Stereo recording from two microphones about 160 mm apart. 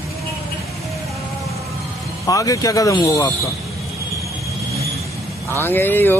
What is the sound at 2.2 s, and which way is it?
Speech, 20° left (ahead or behind).